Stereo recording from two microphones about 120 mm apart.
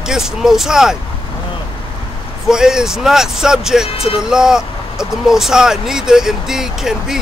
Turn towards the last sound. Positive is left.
turn(degrees=-5)  # may be behind; listen again after turning